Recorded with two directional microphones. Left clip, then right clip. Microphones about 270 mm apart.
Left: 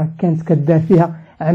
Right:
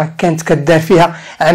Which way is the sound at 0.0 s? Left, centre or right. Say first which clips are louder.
Right 7 dB; centre.